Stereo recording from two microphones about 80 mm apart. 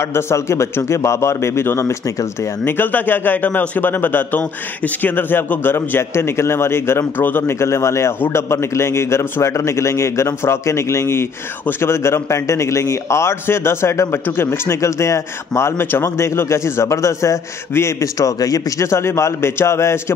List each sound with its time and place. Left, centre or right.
0.0 s a man's voice: left
18.9 s a man's voice: left